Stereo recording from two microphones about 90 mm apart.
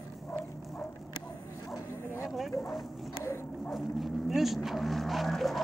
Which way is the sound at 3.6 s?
Centre (ahead or behind).